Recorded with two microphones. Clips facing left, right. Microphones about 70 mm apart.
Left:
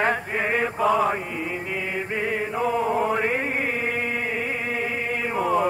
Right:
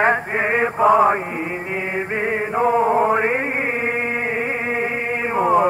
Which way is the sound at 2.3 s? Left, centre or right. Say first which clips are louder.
Right 7 dB; right.